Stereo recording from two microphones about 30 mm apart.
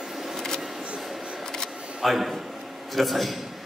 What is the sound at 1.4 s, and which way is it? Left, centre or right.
Single-lens reflex camera, centre.